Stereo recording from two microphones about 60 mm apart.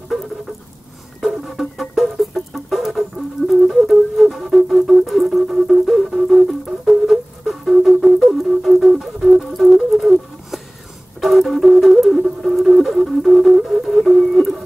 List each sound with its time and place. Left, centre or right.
1.2 s music: centre
8.0 s flute: centre
8.5 s music: centre
12.5 s flute: centre